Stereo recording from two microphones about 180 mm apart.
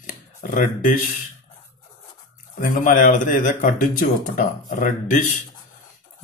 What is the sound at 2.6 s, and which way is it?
Speech, 45° left (ahead or behind).